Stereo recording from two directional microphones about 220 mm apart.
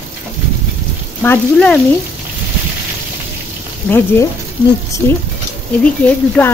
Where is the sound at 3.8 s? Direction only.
10° left (ahead or behind).